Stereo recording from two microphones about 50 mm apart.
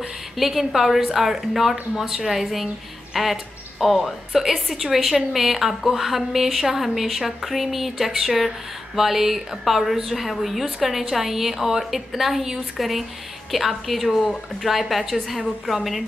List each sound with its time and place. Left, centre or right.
0.4 s a woman's voice: centre